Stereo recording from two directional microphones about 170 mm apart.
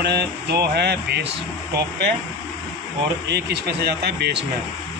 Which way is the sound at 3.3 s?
75° right (ahead or behind).